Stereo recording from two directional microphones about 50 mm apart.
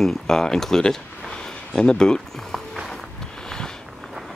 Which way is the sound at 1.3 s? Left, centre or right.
Centre.